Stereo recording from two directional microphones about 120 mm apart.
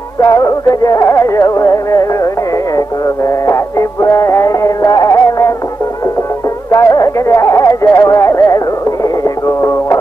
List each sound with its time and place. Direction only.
0.2 s music: 25° left (ahead or behind)
3.3 s music: 25° left (ahead or behind)
6.7 s music: 25° left (ahead or behind)